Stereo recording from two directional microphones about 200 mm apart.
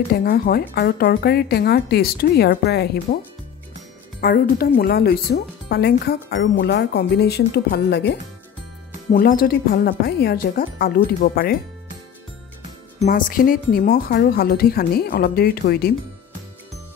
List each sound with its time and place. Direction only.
0.1 s speech: 50° left (ahead or behind)
4.2 s speech: 50° left (ahead or behind)
9.1 s speech: 45° left (ahead or behind)
13.0 s speech: 45° left (ahead or behind)